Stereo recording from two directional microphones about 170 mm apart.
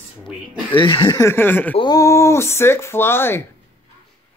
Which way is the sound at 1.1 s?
15° left (ahead or behind).